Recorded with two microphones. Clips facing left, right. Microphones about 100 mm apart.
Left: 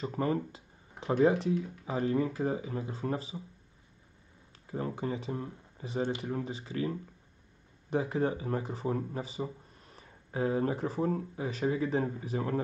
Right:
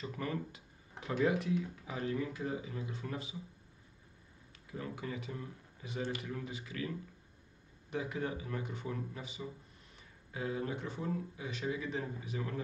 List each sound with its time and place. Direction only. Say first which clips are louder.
0.0 s speech: left 8 dB; 35° left (ahead or behind)
4.6 s speech: left 7 dB; 35° left (ahead or behind)